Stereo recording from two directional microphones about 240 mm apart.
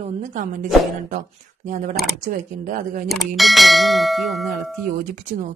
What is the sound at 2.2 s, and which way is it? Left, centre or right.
Speech, right.